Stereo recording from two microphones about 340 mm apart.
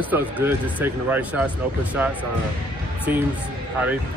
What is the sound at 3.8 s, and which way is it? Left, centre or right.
Speech, centre.